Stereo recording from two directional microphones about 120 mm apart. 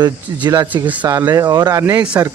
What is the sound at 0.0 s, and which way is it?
Speech, 35° right (ahead or behind).